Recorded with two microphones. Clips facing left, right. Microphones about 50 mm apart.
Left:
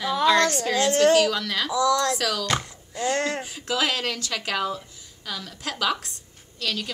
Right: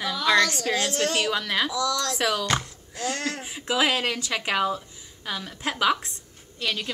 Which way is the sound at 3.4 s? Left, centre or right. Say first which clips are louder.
Right 2 dB; centre.